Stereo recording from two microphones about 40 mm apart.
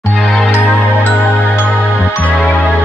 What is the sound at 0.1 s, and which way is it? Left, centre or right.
Music, centre.